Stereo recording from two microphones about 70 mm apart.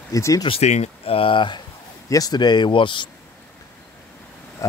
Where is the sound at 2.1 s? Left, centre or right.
Left.